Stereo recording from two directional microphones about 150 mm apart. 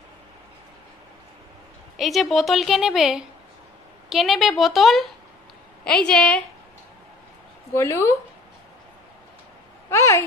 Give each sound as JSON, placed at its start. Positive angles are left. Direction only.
{"t": 2.0, "sound": "a woman's voice", "side_deg": 0}
{"t": 7.7, "sound": "a woman's voice", "side_deg": 20}
{"t": 9.8, "sound": "speech", "side_deg": 20}